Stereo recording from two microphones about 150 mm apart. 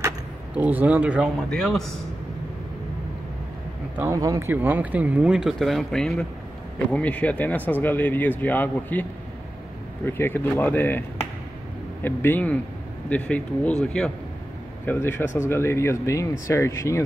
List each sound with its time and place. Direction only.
0.6 s speech: 10° right (ahead or behind)
1.5 s a man's voice: centre (ahead or behind)
4.0 s speech: 20° right (ahead or behind); by 9.0 s 10° left (ahead or behind)
10.0 s speech: 15° left (ahead or behind)